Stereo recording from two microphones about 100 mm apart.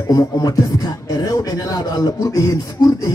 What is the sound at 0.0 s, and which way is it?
Beatboxing, 40° left (ahead or behind).